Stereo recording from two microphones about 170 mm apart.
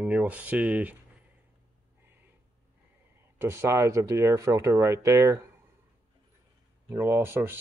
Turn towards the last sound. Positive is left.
turn(degrees=-15)  # may be behind; listen again after turning